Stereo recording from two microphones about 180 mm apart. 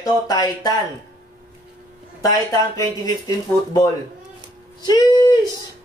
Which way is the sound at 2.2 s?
20° left (ahead or behind).